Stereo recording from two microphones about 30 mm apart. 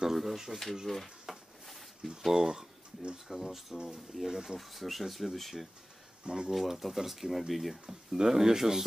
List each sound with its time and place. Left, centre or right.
0.0 s speech: centre
0.9 s speech: centre
1.3 s a sound: centre
2.0 s speech: centre
3.7 s speech: centre
4.3 s speech: right
4.6 s speech: centre
6.2 s speech: right
6.8 s speech: centre
7.8 s speech: right
8.3 s speech: centre